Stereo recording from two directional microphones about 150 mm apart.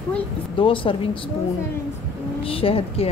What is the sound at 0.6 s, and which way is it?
Speech, 35° left (ahead or behind).